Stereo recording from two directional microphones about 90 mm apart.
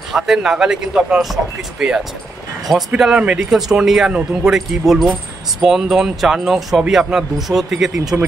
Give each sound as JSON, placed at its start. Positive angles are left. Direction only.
{"t": 0.1, "sound": "speech", "side_deg": -5}
{"t": 8.1, "sound": "speech", "side_deg": -15}